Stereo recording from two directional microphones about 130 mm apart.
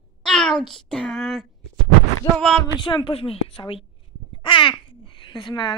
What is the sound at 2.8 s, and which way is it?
A woman's voice, 40° left (ahead or behind).